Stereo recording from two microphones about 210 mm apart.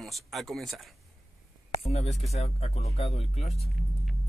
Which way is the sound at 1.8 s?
30° left (ahead or behind).